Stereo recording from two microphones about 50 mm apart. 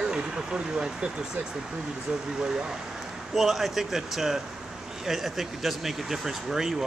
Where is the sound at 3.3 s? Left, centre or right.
Centre.